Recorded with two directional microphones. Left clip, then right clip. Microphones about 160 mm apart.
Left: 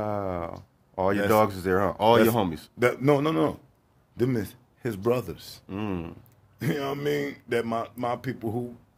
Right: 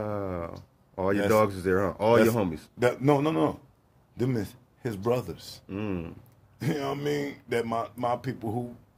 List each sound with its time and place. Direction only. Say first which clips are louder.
0.0 s speech: left 3 dB; 30° left (ahead or behind)